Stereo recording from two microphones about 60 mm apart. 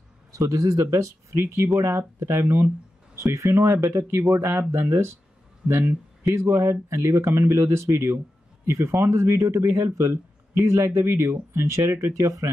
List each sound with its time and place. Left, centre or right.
0.3 s a man's voice: right
0.8 s speech: right
3.2 s speech: right
6.3 s speech: right